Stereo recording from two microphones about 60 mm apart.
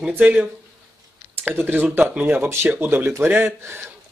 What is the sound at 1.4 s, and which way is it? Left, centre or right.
Speech, right.